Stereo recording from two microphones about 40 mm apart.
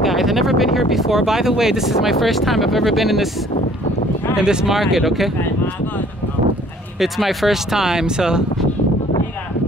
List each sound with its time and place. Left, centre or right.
0.0 s speech: centre
4.4 s speech: centre
4.6 s speech: centre
7.0 s speech: centre